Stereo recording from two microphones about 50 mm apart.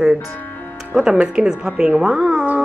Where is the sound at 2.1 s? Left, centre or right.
Centre.